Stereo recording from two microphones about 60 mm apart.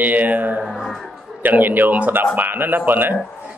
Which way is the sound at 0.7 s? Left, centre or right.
Centre.